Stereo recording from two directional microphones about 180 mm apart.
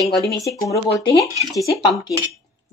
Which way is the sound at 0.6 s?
15° left (ahead or behind).